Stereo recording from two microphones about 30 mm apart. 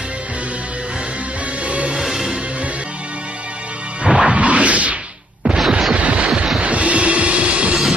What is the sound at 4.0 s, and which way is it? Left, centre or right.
Music, right.